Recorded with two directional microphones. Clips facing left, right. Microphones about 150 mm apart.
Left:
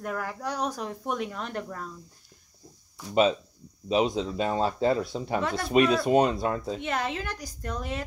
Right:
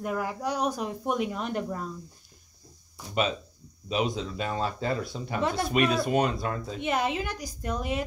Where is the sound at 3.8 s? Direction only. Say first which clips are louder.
Left 4 dB; 30° left (ahead or behind).